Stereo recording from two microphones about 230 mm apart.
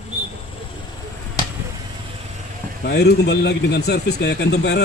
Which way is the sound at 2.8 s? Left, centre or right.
Left.